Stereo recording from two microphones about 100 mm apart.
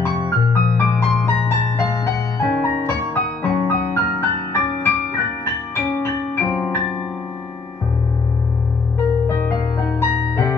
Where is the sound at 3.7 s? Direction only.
25° left (ahead or behind).